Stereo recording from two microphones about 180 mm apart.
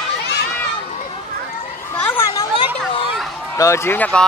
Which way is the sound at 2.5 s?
30° left (ahead or behind).